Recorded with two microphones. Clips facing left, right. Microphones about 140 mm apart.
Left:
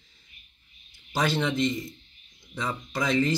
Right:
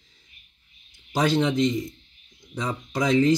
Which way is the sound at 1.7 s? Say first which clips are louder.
Right 4 dB; 5° left (ahead or behind).